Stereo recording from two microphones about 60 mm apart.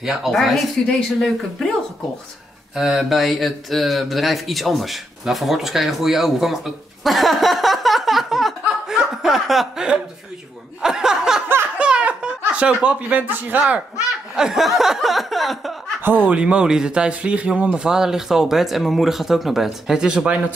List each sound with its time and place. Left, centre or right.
0.0 s chuckle: centre
0.8 s speech: centre
2.7 s speech: centre
11.8 s giggle: centre
13.4 s speech: right
14.3 s chuckle: centre
16.3 s speech: centre